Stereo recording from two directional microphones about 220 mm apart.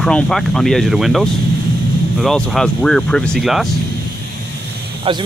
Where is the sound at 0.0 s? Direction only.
Centre (ahead or behind).